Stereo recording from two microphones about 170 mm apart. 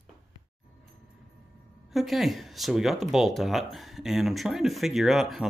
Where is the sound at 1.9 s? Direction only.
Centre (ahead or behind).